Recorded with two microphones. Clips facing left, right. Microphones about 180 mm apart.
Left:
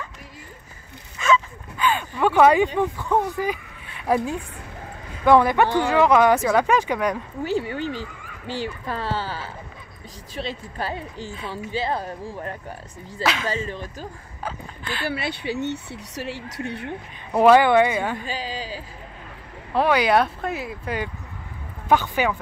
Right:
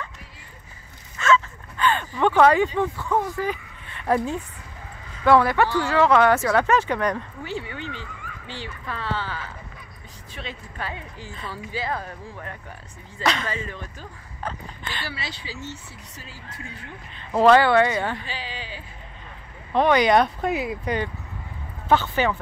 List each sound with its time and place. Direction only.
1.1 s a sound: 10° left (ahead or behind)
5.2 s speech: 15° left (ahead or behind)
7.4 s speech: 40° left (ahead or behind)
13.2 s speech: 5° left (ahead or behind)
13.5 s speech: 30° left (ahead or behind)
14.4 s speech: 5° left (ahead or behind)
15.0 s speech: 60° left (ahead or behind)
17.3 s speech: 15° left (ahead or behind)
18.2 s speech: 40° left (ahead or behind)
19.7 s speech: 5° left (ahead or behind)